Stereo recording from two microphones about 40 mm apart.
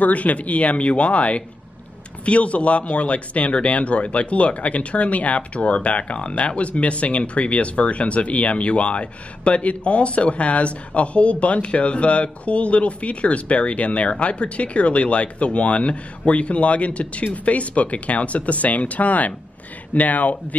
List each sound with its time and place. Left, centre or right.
0.0 s speech: left